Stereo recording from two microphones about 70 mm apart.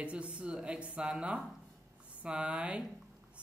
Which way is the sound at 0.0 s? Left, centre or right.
Centre.